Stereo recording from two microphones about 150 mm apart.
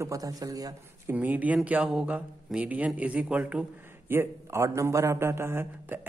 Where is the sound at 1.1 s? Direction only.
10° right (ahead or behind).